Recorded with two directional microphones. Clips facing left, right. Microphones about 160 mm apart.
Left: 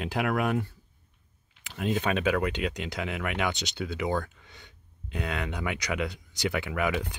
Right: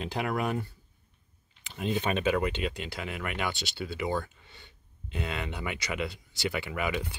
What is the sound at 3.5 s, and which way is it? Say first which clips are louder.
Speech: left 3 dB; 20° left (ahead or behind).